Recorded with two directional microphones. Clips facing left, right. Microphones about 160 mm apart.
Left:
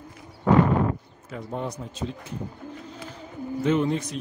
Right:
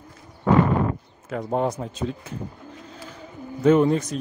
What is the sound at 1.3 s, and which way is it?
Speech, 55° right (ahead or behind).